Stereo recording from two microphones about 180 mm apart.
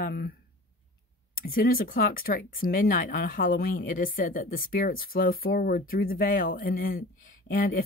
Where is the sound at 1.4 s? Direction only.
55° left (ahead or behind).